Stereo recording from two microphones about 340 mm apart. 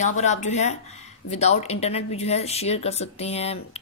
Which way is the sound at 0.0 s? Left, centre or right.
Centre.